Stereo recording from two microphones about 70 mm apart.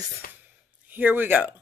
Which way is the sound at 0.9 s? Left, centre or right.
Right.